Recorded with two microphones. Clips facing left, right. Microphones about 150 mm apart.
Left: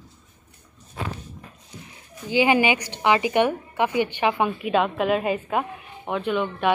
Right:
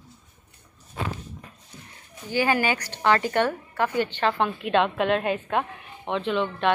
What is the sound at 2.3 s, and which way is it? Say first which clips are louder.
A woman's voice: left 4 dB; 15° left (ahead or behind).